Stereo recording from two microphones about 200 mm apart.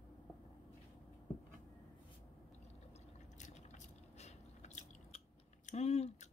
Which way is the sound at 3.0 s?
35° left (ahead or behind).